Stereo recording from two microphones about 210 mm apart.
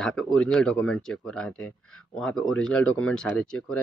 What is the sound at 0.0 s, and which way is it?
Speech, 5° left (ahead or behind).